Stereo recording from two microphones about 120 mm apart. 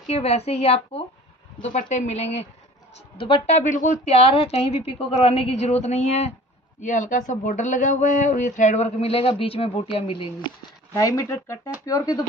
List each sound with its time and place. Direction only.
0.0 s a woman's voice: 60° left (ahead or behind)
1.6 s a woman's voice: 90° left; by 2.4 s 65° left (ahead or behind)
3.2 s a woman's voice: 45° left (ahead or behind)
3.4 s speech: 80° left
4.2 s a woman's voice: 55° left (ahead or behind)
6.8 s a woman's voice: 90° left; by 10.2 s 50° left (ahead or behind)
11.0 s speech: 25° left (ahead or behind)